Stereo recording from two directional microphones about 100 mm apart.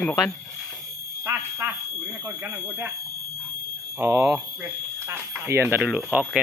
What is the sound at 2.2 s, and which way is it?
Speech, 20° right (ahead or behind).